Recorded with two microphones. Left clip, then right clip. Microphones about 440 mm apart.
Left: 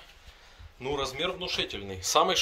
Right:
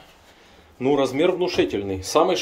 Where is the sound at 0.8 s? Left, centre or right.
Centre.